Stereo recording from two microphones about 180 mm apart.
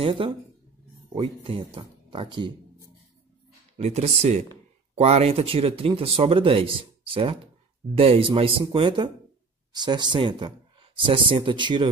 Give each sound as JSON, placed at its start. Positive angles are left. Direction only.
{"t": 0.0, "sound": "speech", "side_deg": -30}
{"t": 3.7, "sound": "speech", "side_deg": -40}